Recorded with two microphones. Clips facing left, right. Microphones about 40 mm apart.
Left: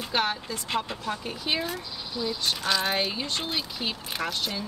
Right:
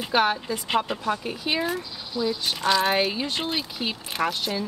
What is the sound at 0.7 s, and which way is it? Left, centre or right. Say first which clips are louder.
Speech: right 5 dB; right.